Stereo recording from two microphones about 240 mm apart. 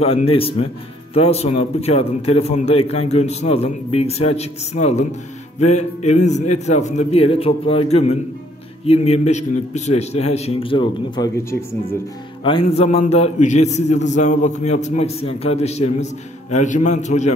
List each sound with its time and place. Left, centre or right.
0.0 s a man's voice: left
12.4 s a man's voice: left